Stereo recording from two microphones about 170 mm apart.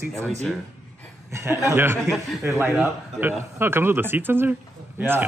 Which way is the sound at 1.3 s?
15° right (ahead or behind).